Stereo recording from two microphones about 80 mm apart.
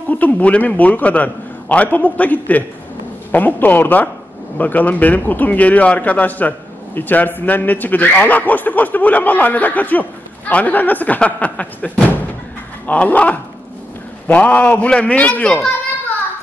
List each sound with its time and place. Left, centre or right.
0.1 s a man's voice: centre